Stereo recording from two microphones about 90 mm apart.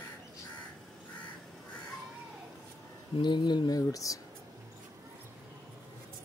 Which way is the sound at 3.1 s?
55° left (ahead or behind).